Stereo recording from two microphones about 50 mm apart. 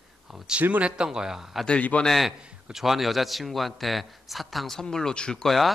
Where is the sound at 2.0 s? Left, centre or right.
Centre.